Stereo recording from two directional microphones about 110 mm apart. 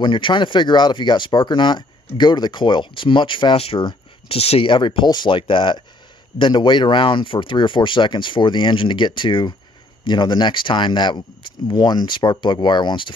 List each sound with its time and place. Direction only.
0.0 s speech: 45° left (ahead or behind)